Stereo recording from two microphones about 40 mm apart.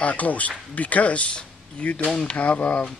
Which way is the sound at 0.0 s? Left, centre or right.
Left.